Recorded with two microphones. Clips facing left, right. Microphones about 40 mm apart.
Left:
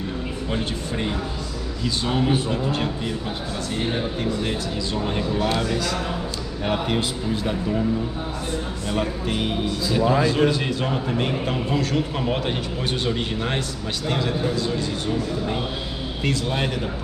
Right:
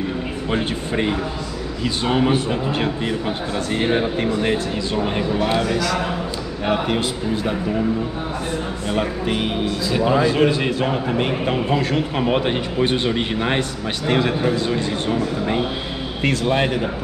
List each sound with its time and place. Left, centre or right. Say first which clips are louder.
0.5 s a man's voice: right 5 dB; right
8.8 s a man's voice: right 4 dB; right